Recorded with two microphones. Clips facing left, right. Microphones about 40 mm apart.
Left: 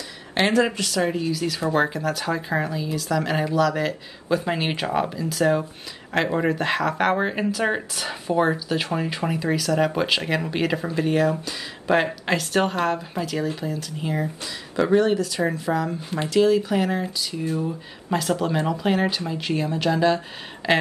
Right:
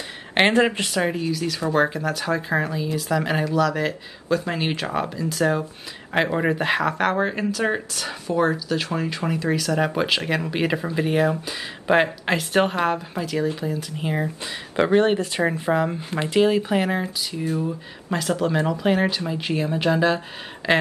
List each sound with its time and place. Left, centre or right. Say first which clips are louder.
0.3 s speech: right 2 dB; right
1.3 s speech: even; centre
3.5 s speech: left 1 dB; centre
7.0 s speech: even; centre
14.0 s speech: right 1 dB; right
14.8 s speech: right 1 dB; right
17.6 s speech: right 1 dB; centre